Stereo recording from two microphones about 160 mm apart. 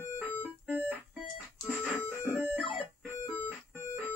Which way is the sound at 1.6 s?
5° right (ahead or behind).